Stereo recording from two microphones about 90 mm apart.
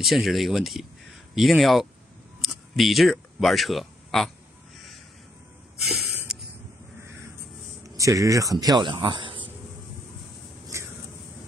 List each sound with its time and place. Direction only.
0.0 s speech: centre (ahead or behind)
4.7 s crow: centre (ahead or behind)
5.8 s a sound: centre (ahead or behind)
7.8 s speech: 40° right (ahead or behind)
9.0 s insect: 65° right (ahead or behind)